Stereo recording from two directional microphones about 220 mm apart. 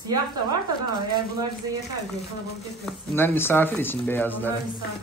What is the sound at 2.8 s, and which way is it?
A man's voice, 10° left (ahead or behind).